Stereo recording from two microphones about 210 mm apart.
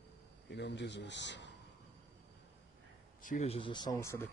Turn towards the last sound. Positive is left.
turn(degrees=15)  # may be behind; listen again after turning